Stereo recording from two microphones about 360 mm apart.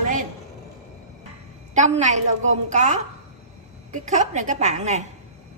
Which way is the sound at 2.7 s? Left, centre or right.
Centre.